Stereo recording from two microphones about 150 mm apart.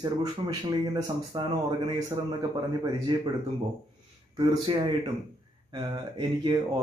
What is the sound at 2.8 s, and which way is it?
Speech, 30° right (ahead or behind).